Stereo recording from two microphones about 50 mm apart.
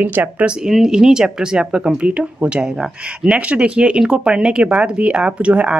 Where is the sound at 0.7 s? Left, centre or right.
Centre.